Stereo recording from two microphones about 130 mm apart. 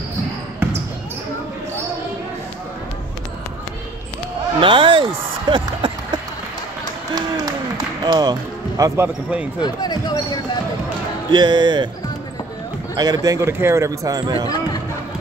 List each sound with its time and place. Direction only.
4.6 s speech: 40° right (ahead or behind)
7.2 s applause: 30° right (ahead or behind); by 9.5 s 15° right (ahead or behind)
9.6 s speech: 30° left (ahead or behind)
11.3 s speech: 35° right (ahead or behind)
12.9 s speech: 30° right (ahead or behind)